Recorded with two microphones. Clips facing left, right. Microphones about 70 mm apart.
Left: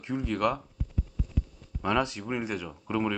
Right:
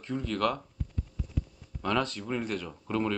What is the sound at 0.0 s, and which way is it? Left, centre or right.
Speech, centre.